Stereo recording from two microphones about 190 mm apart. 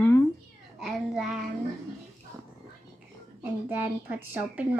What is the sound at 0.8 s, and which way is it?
Speech, centre (ahead or behind).